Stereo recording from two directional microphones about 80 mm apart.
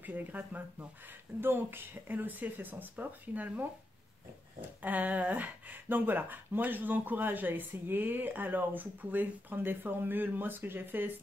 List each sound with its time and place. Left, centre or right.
0.0 s speech: right